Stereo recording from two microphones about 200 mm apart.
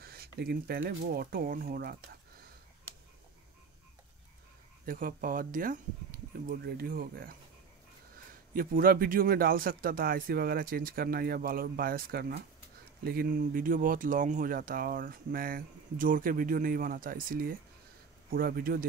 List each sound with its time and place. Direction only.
0.0 s speech: 50° right (ahead or behind)
4.8 s speech: 45° right (ahead or behind)
8.5 s speech: 45° right (ahead or behind)